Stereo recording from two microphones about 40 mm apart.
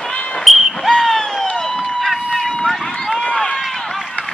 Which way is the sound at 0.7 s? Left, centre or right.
Centre.